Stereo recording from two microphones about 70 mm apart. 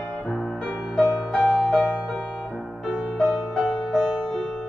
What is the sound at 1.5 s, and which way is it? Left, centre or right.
Music, centre.